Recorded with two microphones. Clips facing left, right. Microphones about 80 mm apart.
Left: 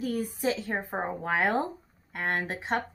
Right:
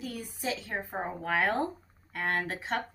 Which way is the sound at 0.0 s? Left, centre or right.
Left.